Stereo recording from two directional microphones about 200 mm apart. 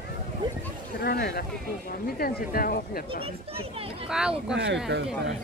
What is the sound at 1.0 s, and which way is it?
Speech, 55° left (ahead or behind).